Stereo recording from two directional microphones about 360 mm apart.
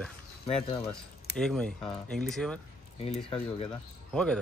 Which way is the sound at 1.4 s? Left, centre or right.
Centre.